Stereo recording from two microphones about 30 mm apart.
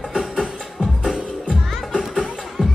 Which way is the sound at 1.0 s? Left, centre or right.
Centre.